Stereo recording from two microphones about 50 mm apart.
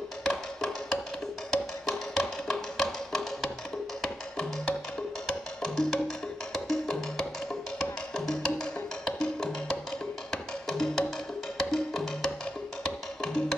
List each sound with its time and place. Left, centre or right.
0.2 s music: centre